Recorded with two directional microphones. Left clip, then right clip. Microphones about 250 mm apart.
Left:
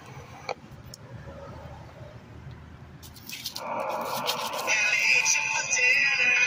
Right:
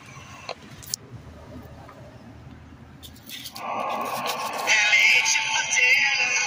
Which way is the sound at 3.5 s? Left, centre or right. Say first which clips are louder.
Right 3 dB; centre.